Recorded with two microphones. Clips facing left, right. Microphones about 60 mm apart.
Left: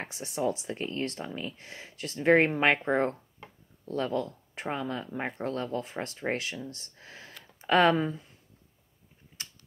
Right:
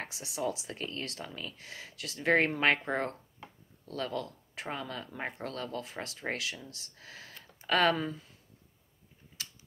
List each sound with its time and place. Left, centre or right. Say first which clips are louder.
0.0 s speech: left 4 dB; left